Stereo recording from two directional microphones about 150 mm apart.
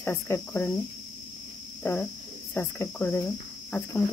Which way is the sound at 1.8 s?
15° left (ahead or behind).